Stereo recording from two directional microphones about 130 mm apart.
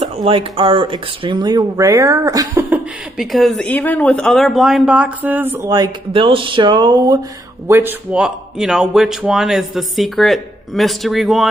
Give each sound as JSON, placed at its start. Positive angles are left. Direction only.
{"t": 0.0, "sound": "speech", "side_deg": -45}
{"t": 3.2, "sound": "speech", "side_deg": 0}
{"t": 3.6, "sound": "speech", "side_deg": 10}
{"t": 5.7, "sound": "speech", "side_deg": -35}
{"t": 7.6, "sound": "speech", "side_deg": -15}